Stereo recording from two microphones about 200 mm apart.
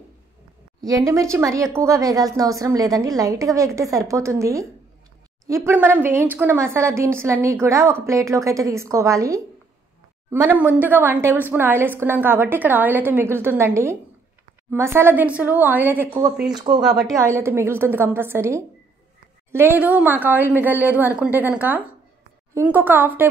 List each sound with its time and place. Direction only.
0.7 s a woman's voice: 20° right (ahead or behind)
16.5 s a woman's voice: 20° right (ahead or behind)